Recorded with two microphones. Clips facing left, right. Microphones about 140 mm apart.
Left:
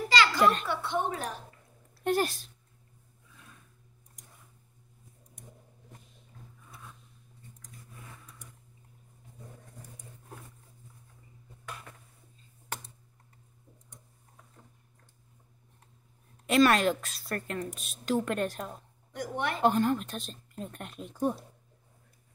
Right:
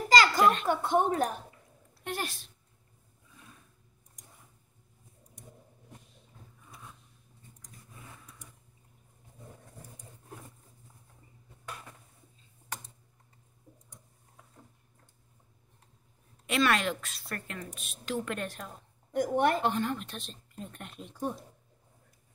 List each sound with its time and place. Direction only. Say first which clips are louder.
0.1 s a sound: right 2 dB; 45° right (ahead or behind)
0.7 s a woman's voice: right 5 dB; 45° right (ahead or behind)
2.0 s speech: left 9 dB; 40° left (ahead or behind)
16.4 s speech: left 5 dB; 40° left (ahead or behind)
19.1 s a woman's voice: right 7 dB; 50° right (ahead or behind)
19.6 s speech: left 5 dB; 40° left (ahead or behind)